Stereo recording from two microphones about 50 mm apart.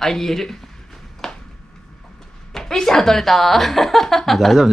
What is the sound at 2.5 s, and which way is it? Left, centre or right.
A woman's voice, centre.